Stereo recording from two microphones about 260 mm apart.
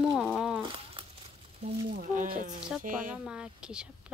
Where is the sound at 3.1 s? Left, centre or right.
Centre.